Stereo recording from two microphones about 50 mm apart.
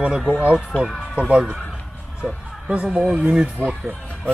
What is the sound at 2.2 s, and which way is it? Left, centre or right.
Speech, centre.